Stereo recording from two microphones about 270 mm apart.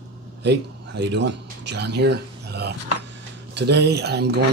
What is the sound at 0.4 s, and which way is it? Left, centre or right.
Speech, right.